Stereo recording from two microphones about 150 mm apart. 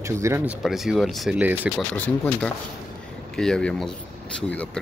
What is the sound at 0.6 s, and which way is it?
Speech, centre (ahead or behind).